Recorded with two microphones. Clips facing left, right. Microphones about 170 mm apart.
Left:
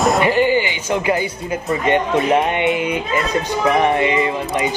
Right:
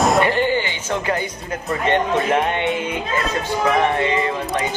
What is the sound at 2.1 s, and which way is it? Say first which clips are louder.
Speech: left 3 dB; 15° left (ahead or behind).